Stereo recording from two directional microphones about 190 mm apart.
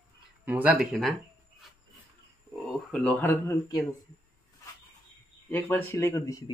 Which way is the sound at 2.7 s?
5° left (ahead or behind).